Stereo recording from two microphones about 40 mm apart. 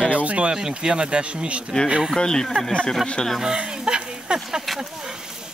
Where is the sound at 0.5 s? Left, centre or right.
Centre.